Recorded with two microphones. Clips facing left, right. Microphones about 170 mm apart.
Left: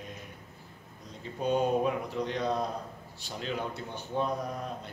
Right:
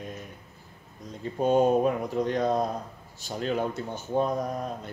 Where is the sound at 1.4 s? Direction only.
45° right (ahead or behind).